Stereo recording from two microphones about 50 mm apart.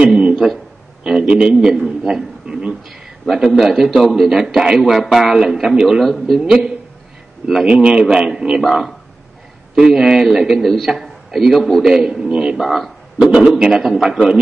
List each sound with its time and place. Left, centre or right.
0.0 s a sound: centre
1.0 s a man's voice: centre
3.4 s a man's voice: centre
12.5 s a man's voice: centre
13.3 s a man's voice: centre